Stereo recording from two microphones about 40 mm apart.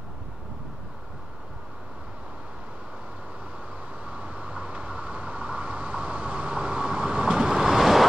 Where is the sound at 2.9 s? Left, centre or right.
Right.